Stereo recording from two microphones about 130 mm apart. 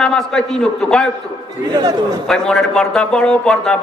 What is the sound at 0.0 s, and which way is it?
A man's voice, 5° left (ahead or behind).